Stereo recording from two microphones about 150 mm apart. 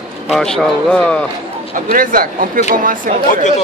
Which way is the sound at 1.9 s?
65° right (ahead or behind).